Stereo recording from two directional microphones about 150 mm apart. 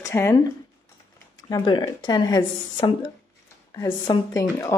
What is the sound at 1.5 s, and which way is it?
A woman's voice, 30° left (ahead or behind).